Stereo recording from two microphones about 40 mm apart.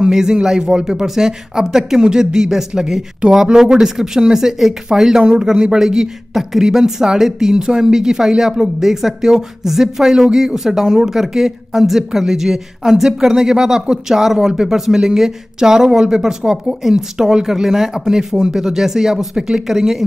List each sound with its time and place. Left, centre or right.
0.1 s speech: centre
19.3 s speech: centre
19.7 s speech: centre